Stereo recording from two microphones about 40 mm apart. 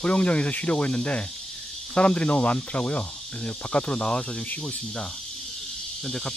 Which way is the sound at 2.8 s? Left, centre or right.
Left.